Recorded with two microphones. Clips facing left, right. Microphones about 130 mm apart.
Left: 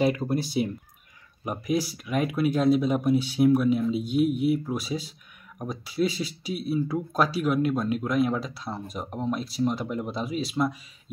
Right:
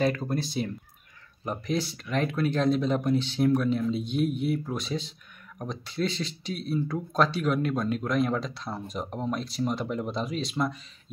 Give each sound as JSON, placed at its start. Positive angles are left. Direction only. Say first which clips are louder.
{"t": 0.0, "sound": "speech", "louder": "left 2 dB", "side_deg": 10}